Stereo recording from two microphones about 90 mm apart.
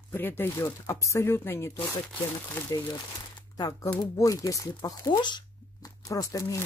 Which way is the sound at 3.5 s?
40° left (ahead or behind).